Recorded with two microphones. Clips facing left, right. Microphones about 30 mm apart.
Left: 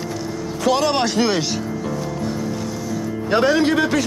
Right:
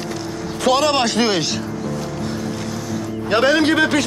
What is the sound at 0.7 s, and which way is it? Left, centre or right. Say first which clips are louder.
Speech: right 2 dB; right.